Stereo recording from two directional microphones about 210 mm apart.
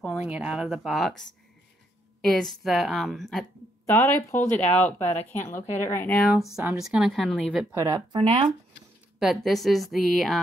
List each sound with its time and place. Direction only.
0.2 s a woman's voice: 5° right (ahead or behind)
2.2 s a woman's voice: centre (ahead or behind)
3.8 s a woman's voice: 15° left (ahead or behind)
7.7 s speech: 15° right (ahead or behind)
8.1 s speech: 25° right (ahead or behind)
9.2 s a woman's voice: centre (ahead or behind)